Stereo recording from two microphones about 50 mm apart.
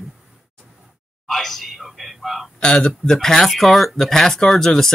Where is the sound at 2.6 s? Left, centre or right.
Centre.